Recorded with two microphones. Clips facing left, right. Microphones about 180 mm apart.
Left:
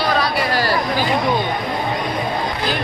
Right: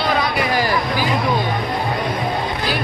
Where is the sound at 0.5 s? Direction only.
15° right (ahead or behind).